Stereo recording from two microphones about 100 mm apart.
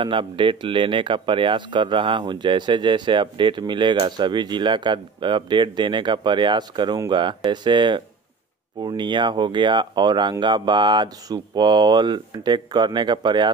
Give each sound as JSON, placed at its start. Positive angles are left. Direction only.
{"t": 0.0, "sound": "speech", "side_deg": -55}